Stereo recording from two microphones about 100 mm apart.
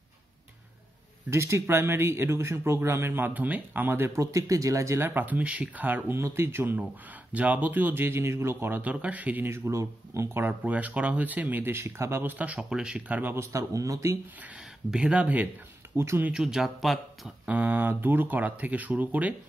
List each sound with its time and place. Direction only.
1.3 s speech: 25° right (ahead or behind)
14.9 s speech: 10° right (ahead or behind)
16.0 s speech: 25° right (ahead or behind)
16.3 s speech: 5° right (ahead or behind)
17.5 s speech: 15° right (ahead or behind)